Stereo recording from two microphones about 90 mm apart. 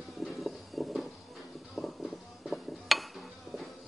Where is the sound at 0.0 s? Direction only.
Centre (ahead or behind).